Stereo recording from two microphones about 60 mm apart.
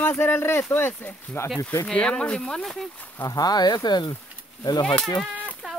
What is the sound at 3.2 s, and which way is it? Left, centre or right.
Speech, left.